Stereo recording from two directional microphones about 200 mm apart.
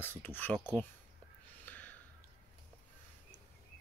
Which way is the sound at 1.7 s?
10° left (ahead or behind).